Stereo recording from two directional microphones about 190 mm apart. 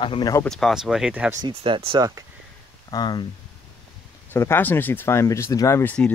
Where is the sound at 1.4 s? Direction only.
30° right (ahead or behind).